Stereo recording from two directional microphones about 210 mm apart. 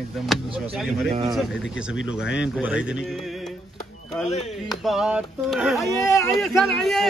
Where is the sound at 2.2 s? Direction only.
55° left (ahead or behind).